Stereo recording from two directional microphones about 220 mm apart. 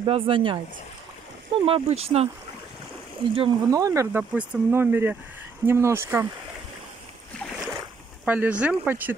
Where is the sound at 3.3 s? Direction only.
20° right (ahead or behind).